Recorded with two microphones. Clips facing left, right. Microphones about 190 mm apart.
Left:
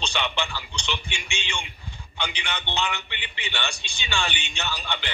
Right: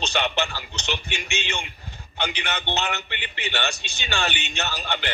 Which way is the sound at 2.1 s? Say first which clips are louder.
Right 3 dB; 55° right (ahead or behind).